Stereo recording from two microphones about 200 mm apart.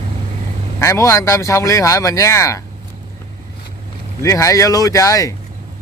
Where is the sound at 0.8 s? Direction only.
15° left (ahead or behind).